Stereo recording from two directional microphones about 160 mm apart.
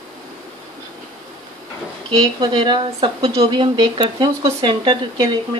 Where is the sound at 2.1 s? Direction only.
25° right (ahead or behind).